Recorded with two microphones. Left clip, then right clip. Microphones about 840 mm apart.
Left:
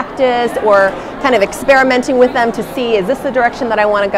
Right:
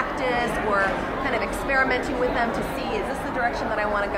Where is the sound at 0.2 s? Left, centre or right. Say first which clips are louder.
Left 15 dB; left.